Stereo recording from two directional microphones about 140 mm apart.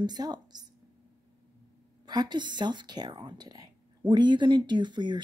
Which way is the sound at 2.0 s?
30° right (ahead or behind).